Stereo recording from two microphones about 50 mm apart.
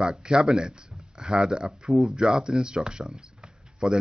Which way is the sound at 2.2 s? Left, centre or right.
Centre.